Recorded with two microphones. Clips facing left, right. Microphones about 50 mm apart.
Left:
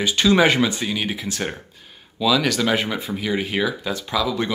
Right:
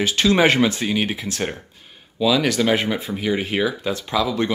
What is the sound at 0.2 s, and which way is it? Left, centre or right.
Speech, right.